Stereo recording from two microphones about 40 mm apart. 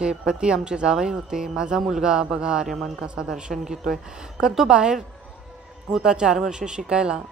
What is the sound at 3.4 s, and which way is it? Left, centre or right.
Speech, centre.